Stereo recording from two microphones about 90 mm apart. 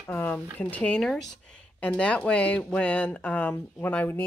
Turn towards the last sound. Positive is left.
turn(degrees=20)  # may be behind; listen again after turning